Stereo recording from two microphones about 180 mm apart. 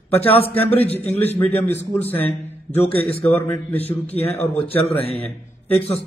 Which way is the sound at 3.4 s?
10° left (ahead or behind).